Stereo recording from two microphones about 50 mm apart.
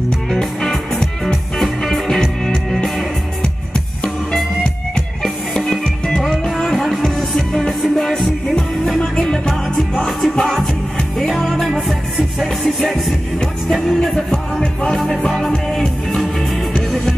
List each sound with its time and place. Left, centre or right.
0.3 s music: centre
3.4 s music: centre
14.3 s music: centre
14.9 s music: centre
16.3 s music: centre